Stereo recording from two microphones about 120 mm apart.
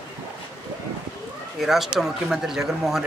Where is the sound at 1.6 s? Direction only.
Centre (ahead or behind).